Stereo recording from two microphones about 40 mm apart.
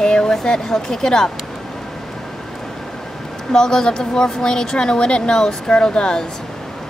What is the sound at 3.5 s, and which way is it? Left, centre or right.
Speech, centre.